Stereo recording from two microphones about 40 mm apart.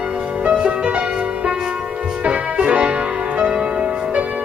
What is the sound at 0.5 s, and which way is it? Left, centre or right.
Music, right.